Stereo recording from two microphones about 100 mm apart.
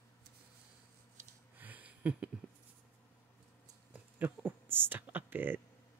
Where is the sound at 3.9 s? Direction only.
20° right (ahead or behind).